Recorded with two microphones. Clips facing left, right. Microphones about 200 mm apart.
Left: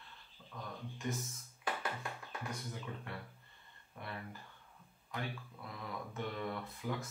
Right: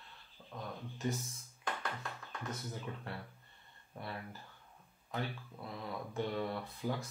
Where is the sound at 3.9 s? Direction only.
35° right (ahead or behind).